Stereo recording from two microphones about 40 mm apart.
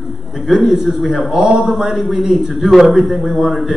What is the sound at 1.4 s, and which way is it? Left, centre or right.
A man's voice, right.